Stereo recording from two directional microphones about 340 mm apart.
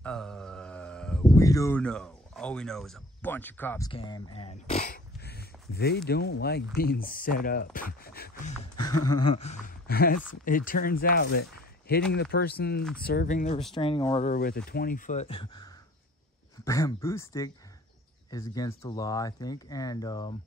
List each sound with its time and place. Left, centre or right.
0.0 s a sound: centre; by 5.9 s left
6.0 s speech: left
9.1 s speech: centre